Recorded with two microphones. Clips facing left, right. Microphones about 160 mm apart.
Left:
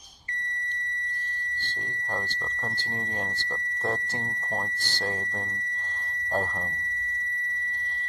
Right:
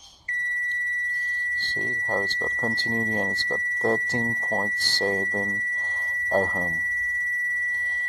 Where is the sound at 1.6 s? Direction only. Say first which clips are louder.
Right 7 dB; 20° right (ahead or behind).